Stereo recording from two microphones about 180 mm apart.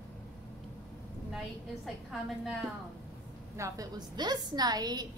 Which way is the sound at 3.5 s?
15° right (ahead or behind).